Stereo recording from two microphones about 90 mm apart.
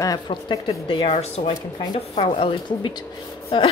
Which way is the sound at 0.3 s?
80° left.